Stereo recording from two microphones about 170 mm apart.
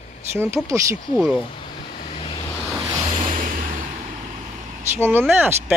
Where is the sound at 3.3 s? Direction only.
55° right (ahead or behind).